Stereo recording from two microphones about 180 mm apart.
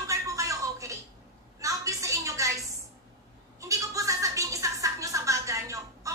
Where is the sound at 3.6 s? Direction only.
20° right (ahead or behind).